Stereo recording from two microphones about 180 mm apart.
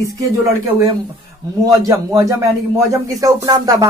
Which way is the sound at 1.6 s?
20° right (ahead or behind).